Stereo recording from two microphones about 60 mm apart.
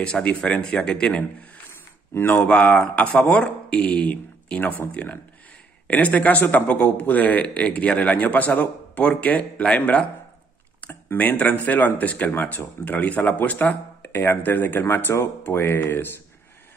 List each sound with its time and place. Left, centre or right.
0.0 s a man's voice: centre
2.1 s speech: left
2.4 s a man's voice: centre; by 16.1 s left